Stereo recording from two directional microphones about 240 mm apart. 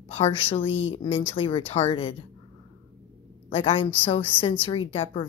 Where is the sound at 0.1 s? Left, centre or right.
Left.